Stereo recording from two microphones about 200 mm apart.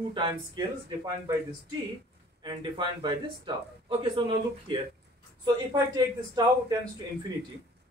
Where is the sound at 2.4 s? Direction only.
25° right (ahead or behind).